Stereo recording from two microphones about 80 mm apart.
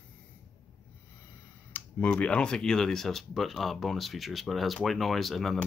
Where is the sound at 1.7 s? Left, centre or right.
Left.